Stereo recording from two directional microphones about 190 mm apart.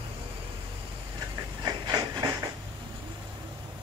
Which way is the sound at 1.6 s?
20° right (ahead or behind).